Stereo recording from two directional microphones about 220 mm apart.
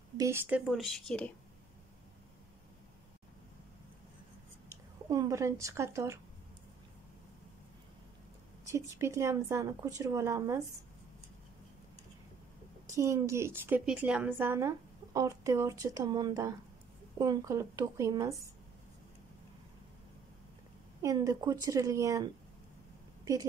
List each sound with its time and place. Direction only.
0.2 s speech: 10° right (ahead or behind)
5.1 s a woman's voice: 15° right (ahead or behind)
8.6 s a woman's voice: 15° right (ahead or behind)
12.8 s a woman's voice: 15° right (ahead or behind)
21.0 s a woman's voice: 15° right (ahead or behind)